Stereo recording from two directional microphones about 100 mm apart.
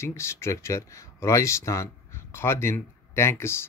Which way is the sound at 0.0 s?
25° left (ahead or behind).